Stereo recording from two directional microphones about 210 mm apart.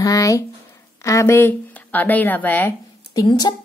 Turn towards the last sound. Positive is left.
turn(degrees=20)  # may be behind; listen again after turning